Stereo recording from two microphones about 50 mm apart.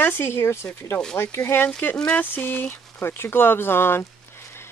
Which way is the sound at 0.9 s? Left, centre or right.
Centre.